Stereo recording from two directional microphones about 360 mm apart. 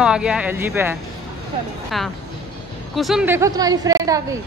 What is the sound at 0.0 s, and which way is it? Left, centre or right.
A woman's voice, centre.